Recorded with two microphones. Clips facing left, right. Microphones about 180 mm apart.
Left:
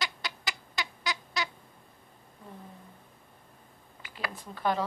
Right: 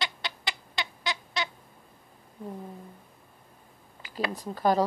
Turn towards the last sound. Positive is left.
turn(degrees=-40)  # may be behind; listen again after turning